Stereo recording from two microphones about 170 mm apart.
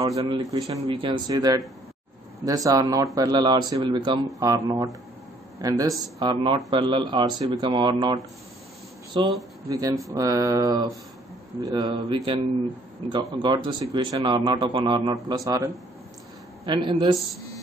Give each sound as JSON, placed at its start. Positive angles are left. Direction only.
{"t": 0.2, "sound": "speech", "side_deg": -25}
{"t": 0.7, "sound": "speech", "side_deg": -30}